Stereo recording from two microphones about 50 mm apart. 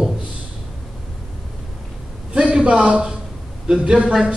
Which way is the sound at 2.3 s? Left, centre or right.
Centre.